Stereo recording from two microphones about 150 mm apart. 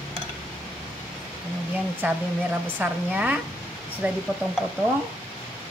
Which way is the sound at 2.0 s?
10° right (ahead or behind).